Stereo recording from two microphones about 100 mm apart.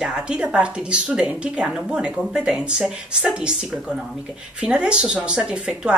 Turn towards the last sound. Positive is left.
turn(degrees=-10)  # may be behind; listen again after turning